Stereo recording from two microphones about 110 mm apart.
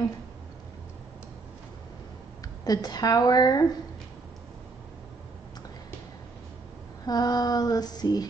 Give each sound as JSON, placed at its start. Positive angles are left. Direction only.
{"t": 2.6, "sound": "female singing", "side_deg": 35}
{"t": 7.1, "sound": "female singing", "side_deg": 35}